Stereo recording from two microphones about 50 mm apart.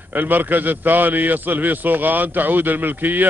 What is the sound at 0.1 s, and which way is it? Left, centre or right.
A man's voice, right.